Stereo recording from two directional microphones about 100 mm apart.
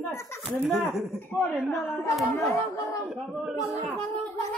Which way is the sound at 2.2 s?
30° left (ahead or behind).